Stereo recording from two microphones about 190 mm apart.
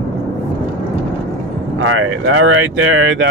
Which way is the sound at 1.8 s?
90° right.